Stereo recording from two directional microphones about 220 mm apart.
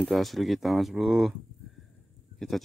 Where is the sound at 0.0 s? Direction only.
Centre (ahead or behind).